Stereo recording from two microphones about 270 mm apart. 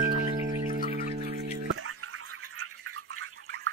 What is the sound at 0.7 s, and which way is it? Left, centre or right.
Music, right.